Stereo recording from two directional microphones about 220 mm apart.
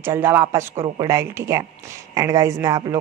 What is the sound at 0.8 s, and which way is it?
Speech, 20° right (ahead or behind).